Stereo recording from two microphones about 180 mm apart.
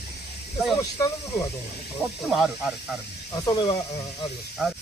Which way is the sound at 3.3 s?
20° left (ahead or behind).